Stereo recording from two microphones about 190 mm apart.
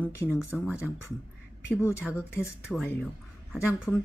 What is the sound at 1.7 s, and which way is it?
A woman's voice, 15° left (ahead or behind).